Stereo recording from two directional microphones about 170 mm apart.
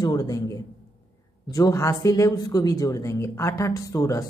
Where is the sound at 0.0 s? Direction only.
20° left (ahead or behind).